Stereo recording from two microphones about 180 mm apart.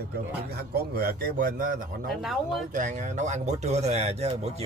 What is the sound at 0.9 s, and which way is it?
Speech, 55° right (ahead or behind).